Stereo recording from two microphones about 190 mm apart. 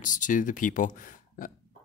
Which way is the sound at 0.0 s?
45° left (ahead or behind).